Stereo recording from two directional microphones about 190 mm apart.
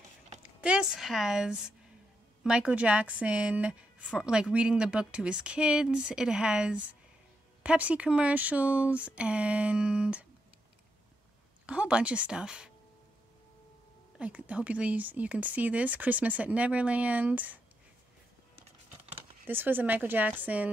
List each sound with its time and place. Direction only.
0.6 s speech: 5° right (ahead or behind)
11.6 s speech: 5° right (ahead or behind)
14.1 s speech: 5° right (ahead or behind)
19.0 s speech: 10° right (ahead or behind)